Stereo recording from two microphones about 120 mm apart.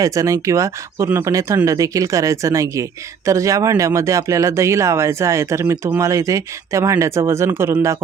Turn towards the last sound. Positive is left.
turn(degrees=-20)  # may be behind; listen again after turning